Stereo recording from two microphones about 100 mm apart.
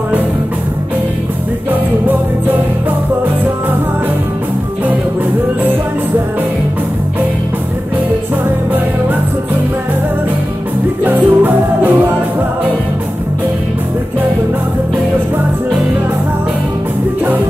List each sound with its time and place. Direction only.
11.1 s music: 20° right (ahead or behind)